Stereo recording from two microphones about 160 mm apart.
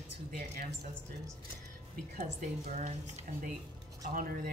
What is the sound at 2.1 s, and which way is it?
A woman's voice, 50° right (ahead or behind).